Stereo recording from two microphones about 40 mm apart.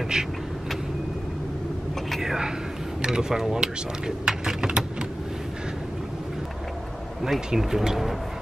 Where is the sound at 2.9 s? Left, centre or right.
Centre.